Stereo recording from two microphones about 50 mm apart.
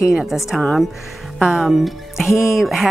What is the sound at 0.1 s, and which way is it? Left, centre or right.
Speech, centre.